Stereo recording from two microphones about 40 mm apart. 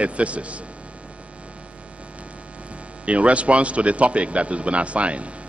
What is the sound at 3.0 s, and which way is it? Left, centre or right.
A man's voice, right.